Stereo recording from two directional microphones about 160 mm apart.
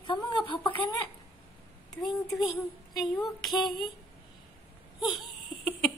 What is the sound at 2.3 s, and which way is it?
A woman's voice, centre (ahead or behind).